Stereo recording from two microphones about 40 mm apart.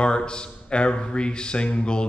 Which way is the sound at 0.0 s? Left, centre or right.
Left.